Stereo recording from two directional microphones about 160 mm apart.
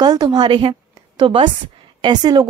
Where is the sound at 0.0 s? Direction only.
25° right (ahead or behind).